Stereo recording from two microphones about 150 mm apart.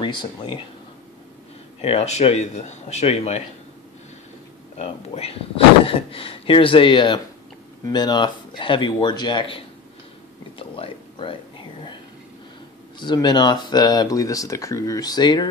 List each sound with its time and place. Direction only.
0.0 s speech: 30° left (ahead or behind)
1.8 s speech: 45° left (ahead or behind)
4.7 s speech: 40° left (ahead or behind)
10.6 s a sound: 35° left (ahead or behind)
13.0 s speech: 30° left (ahead or behind)